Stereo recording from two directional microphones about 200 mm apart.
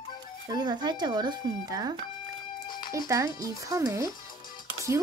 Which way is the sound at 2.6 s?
20° left (ahead or behind).